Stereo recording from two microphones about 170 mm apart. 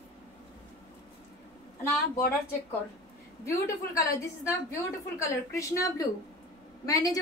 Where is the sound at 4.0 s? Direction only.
20° left (ahead or behind).